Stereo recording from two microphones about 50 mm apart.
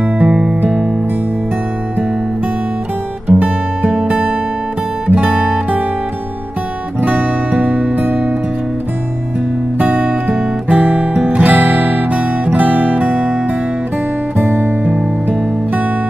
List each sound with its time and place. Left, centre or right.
0.2 s music: centre
3.3 s music: right
7.0 s music: right
9.8 s music: right
14.4 s music: right